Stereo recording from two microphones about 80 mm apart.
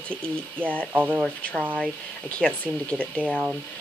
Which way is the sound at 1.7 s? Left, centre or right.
Centre.